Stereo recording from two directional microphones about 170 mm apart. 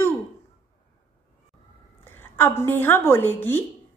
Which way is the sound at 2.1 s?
10° left (ahead or behind).